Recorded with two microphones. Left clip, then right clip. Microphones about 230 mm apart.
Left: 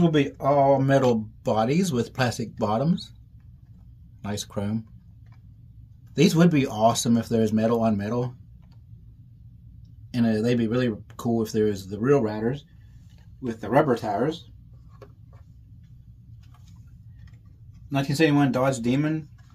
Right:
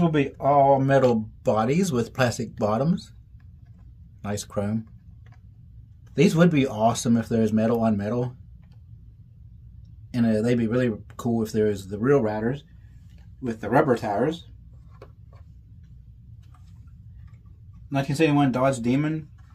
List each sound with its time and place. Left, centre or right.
0.0 s speech: centre
4.2 s speech: centre
6.1 s speech: centre
10.1 s speech: centre
14.0 s speech: right
17.8 s speech: centre